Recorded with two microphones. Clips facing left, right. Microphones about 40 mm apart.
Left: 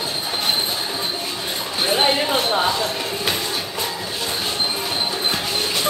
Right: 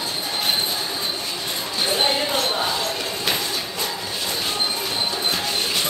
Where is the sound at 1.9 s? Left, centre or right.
Left.